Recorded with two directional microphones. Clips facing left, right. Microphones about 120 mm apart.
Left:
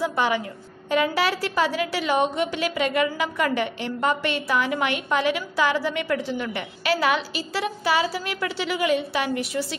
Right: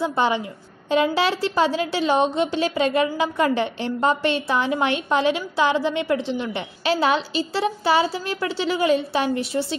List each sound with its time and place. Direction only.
0.0 s a woman's voice: 25° right (ahead or behind)